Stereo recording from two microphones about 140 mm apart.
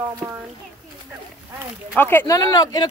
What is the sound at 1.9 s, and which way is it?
Speech, 15° left (ahead or behind).